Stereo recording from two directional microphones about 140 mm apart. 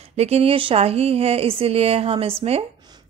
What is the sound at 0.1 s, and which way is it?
A woman's voice, 50° right (ahead or behind).